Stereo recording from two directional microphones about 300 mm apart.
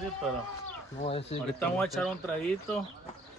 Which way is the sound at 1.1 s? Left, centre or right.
Centre.